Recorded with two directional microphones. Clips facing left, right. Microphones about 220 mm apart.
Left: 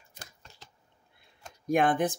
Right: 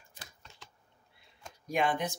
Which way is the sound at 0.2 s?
45° left (ahead or behind).